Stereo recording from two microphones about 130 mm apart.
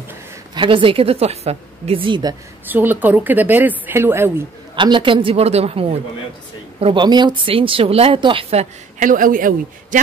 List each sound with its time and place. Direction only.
0.6 s speech: 40° right (ahead or behind)
2.6 s a woman's voice: 15° right (ahead or behind)
4.7 s speech: 40° right (ahead or behind)
6.8 s speech: 40° right (ahead or behind)
9.0 s a man's voice: 90° right